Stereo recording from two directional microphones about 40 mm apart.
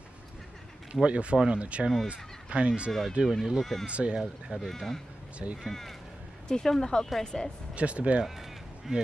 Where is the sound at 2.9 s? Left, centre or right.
Centre.